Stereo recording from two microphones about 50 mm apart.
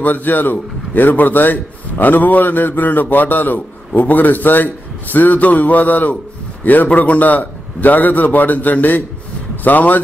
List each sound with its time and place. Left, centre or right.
0.0 s a man's voice: left